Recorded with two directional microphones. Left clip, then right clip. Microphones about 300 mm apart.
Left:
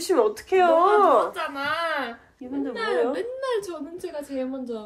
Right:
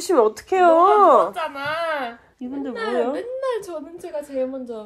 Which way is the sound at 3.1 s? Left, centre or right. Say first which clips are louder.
Right 2 dB; centre.